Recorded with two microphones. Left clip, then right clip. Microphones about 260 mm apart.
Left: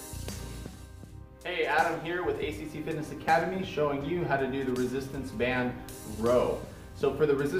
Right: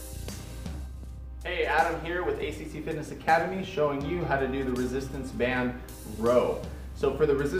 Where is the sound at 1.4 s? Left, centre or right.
Centre.